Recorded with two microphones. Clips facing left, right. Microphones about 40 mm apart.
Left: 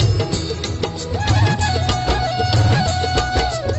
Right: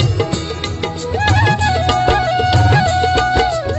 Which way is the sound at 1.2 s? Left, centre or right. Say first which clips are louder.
Right 6 dB; right.